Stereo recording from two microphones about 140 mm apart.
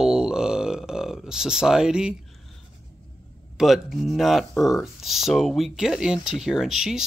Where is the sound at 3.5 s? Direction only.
Centre (ahead or behind).